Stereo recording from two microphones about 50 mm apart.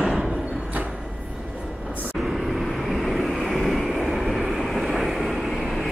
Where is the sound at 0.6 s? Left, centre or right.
Right.